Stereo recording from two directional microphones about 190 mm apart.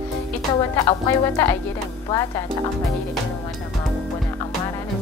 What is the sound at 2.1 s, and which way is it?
Speech, 20° left (ahead or behind).